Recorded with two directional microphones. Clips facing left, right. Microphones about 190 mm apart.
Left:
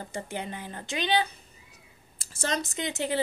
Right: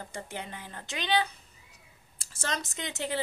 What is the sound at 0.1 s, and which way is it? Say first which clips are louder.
Speech: left 7 dB; 15° left (ahead or behind).